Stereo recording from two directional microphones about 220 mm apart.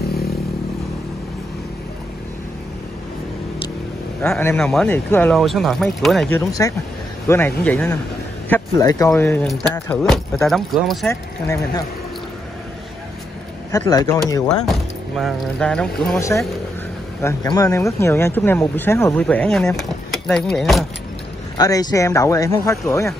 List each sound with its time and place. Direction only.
4.2 s speech: 5° left (ahead or behind)
11.1 s speech: 15° left (ahead or behind)
13.7 s speech: 15° left (ahead or behind)
15.1 s speech: centre (ahead or behind)
16.2 s speech: 15° left (ahead or behind)
21.5 s speech: 15° left (ahead or behind)